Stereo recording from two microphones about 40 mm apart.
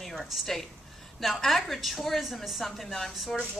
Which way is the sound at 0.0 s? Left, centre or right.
Centre.